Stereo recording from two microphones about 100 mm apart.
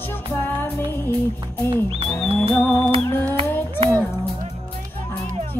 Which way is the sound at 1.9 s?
75° right (ahead or behind).